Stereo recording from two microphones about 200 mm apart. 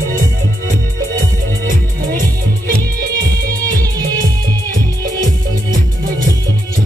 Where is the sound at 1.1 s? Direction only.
40° right (ahead or behind).